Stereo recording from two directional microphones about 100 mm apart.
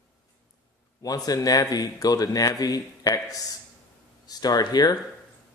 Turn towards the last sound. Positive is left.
turn(degrees=40)  # may be behind; listen again after turning